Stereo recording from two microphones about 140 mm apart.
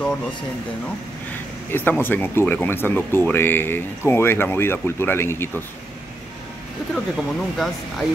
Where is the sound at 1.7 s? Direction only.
15° left (ahead or behind).